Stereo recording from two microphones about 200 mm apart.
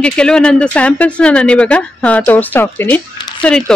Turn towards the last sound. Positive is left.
turn(degrees=5)  # may be behind; listen again after turning